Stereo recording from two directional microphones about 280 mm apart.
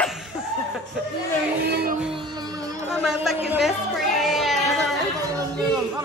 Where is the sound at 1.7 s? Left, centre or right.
Right.